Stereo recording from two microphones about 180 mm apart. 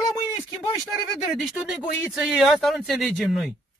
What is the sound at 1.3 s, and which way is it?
Speech, centre (ahead or behind).